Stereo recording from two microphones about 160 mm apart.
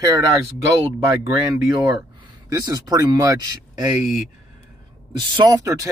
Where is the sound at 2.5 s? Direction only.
25° right (ahead or behind).